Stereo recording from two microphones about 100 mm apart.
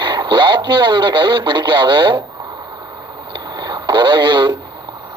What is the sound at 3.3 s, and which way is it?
Radio, 45° right (ahead or behind).